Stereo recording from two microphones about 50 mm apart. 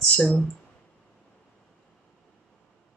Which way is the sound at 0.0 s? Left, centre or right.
Centre.